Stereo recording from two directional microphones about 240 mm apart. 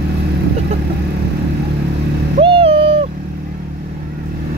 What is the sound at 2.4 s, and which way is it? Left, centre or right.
Owl, right.